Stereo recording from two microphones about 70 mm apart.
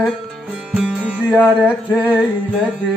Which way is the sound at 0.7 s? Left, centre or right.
Centre.